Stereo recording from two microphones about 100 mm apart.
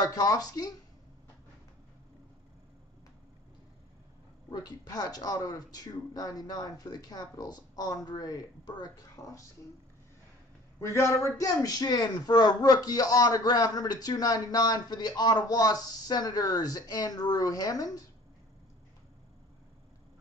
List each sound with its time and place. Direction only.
0.0 s speech: 40° left (ahead or behind)
4.5 s speech: 40° left (ahead or behind)
10.8 s speech: 30° left (ahead or behind)